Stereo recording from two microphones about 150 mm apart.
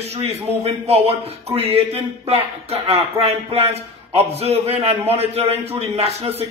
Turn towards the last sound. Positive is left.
turn(degrees=-45)  # may be behind; listen again after turning